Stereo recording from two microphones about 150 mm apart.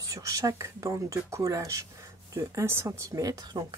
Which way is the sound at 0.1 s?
20° right (ahead or behind).